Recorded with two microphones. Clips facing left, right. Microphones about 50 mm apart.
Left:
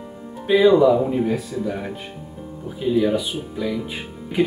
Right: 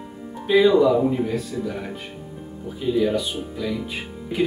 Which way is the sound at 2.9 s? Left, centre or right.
Centre.